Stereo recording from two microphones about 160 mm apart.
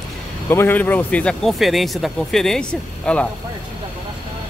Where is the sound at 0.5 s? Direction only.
15° left (ahead or behind).